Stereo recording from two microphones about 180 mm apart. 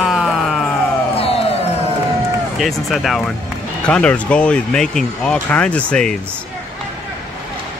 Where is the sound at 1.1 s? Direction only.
35° left (ahead or behind).